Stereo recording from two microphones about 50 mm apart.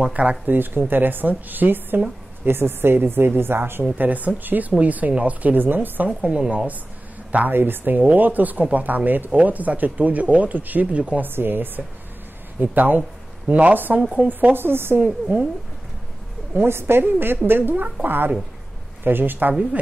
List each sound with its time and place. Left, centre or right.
0.1 s speech: right
0.6 s a woman's voice: right
4.0 s speech: right
6.0 s speech: centre
7.3 s speech: right
11.2 s a woman's voice: right
15.0 s speech: right
16.6 s a woman's voice: right